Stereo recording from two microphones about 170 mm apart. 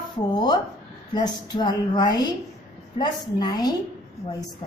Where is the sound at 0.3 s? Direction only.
25° left (ahead or behind).